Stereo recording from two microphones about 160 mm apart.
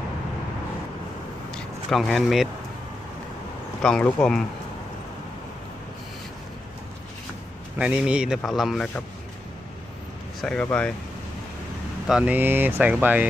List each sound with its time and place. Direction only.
1.5 s speech: 5° left (ahead or behind)
3.8 s speech: 5° left (ahead or behind)
7.8 s speech: 5° right (ahead or behind)
10.4 s speech: 5° left (ahead or behind)
12.1 s speech: 5° right (ahead or behind)